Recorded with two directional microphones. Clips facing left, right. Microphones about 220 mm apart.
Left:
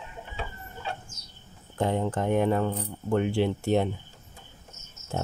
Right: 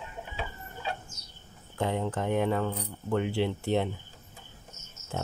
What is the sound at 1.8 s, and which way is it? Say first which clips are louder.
Speech: left 3 dB; 45° left (ahead or behind).